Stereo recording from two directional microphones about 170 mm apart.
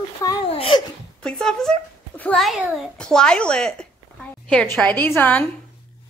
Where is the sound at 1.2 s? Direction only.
5° left (ahead or behind).